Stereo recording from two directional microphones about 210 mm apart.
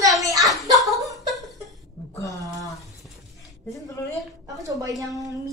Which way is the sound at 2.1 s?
15° left (ahead or behind).